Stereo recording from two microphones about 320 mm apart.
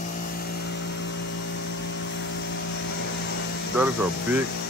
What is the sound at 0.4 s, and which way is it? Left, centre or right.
Vehicle, left.